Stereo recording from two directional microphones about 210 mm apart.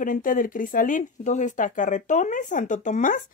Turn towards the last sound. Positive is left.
turn(degrees=35)  # may be behind; listen again after turning